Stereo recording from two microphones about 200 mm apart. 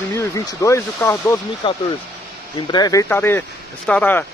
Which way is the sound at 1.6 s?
25° left (ahead or behind).